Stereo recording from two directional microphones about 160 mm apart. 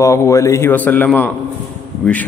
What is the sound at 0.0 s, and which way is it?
A man's voice, 20° left (ahead or behind).